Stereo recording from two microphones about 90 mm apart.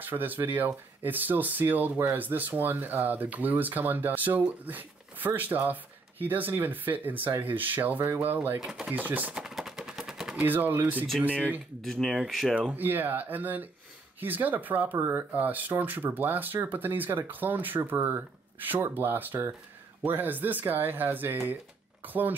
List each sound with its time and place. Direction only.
0.0 s speech: 20° right (ahead or behind)
8.5 s speech: 5° right (ahead or behind)
8.9 s speech: 20° right (ahead or behind)
9.4 s gunshot: 5° right (ahead or behind)
10.4 s speech: 20° right (ahead or behind)
11.8 s speech: centre (ahead or behind)
12.5 s speech: 20° right (ahead or behind)